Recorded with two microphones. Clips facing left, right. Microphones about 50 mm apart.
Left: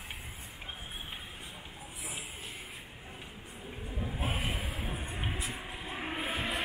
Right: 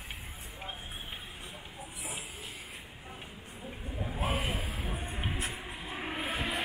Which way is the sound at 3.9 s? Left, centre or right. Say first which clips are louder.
Right 3 dB; centre.